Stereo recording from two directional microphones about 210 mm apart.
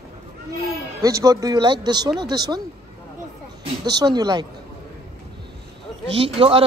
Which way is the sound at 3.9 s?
20° right (ahead or behind).